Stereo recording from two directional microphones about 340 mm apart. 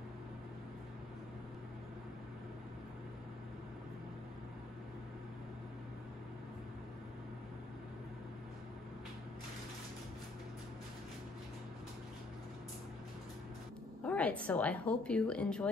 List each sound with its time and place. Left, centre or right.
14.0 s speech: centre